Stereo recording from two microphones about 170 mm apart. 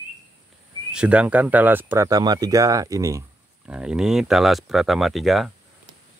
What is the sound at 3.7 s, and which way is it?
Speech, 5° right (ahead or behind).